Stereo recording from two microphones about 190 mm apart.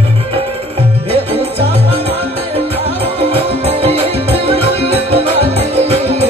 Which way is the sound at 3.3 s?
30° right (ahead or behind).